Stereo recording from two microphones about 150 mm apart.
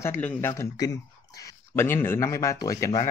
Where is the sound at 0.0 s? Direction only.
15° left (ahead or behind).